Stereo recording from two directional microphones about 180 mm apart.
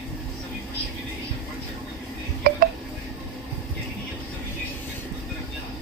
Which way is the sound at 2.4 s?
55° right (ahead or behind).